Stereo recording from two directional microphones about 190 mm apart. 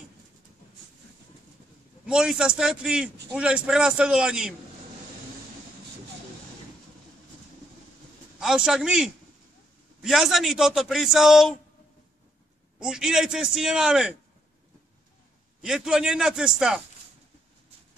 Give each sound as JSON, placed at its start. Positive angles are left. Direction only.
{"t": 2.0, "sound": "speech", "side_deg": -5}
{"t": 8.4, "sound": "speech", "side_deg": 0}
{"t": 12.7, "sound": "speech", "side_deg": -5}
{"t": 15.6, "sound": "speech", "side_deg": -5}